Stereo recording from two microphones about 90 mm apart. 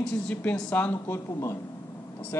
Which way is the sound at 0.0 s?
15° left (ahead or behind).